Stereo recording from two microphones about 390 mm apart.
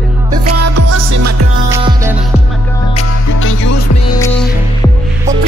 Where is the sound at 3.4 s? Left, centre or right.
Left.